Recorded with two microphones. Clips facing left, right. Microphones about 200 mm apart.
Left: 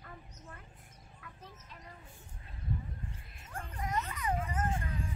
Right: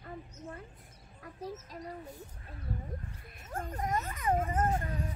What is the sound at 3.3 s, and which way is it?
Speech, 40° right (ahead or behind).